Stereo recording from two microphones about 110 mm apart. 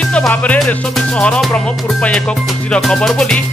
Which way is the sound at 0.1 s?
10° left (ahead or behind).